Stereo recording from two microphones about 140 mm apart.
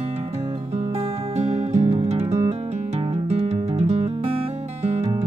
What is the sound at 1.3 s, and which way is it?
Music, 45° right (ahead or behind).